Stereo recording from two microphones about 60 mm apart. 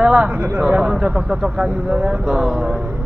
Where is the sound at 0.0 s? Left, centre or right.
Centre.